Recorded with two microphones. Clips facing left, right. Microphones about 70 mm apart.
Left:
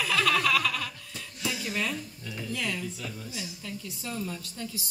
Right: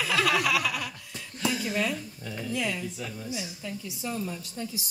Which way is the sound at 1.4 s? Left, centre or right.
Right.